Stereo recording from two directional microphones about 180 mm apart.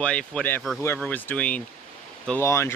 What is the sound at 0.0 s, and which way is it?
Speech, 5° left (ahead or behind).